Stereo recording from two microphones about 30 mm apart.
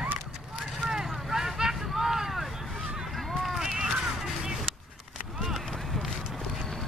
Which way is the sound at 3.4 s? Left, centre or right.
Centre.